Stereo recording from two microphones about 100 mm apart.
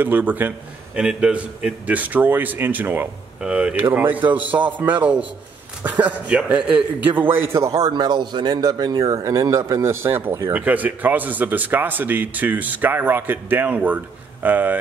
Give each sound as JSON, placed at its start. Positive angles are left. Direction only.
{"t": 0.0, "sound": "a man's voice", "side_deg": -15}